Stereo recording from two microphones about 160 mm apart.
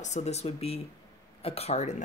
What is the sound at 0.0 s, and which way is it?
Speech, 45° left (ahead or behind).